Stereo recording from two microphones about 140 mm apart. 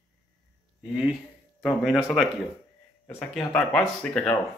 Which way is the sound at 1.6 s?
Centre (ahead or behind).